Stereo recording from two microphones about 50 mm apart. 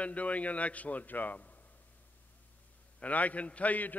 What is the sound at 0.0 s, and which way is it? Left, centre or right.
A man's voice, left.